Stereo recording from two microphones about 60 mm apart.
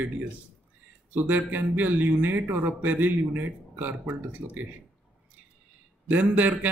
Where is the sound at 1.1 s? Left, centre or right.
Right.